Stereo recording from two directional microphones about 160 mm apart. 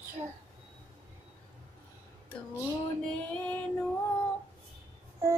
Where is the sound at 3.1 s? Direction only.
10° left (ahead or behind).